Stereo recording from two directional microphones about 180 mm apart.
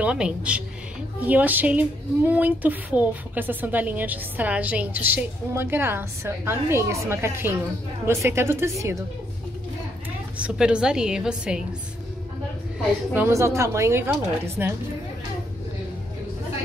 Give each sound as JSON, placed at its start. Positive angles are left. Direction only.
{"t": 0.0, "sound": "a woman's voice", "side_deg": -5}
{"t": 10.3, "sound": "a woman's voice", "side_deg": -5}
{"t": 13.1, "sound": "a woman's voice", "side_deg": -15}